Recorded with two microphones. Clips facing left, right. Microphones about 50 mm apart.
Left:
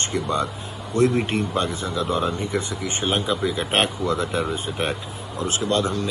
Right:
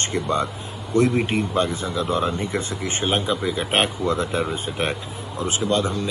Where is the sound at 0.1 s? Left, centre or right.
Right.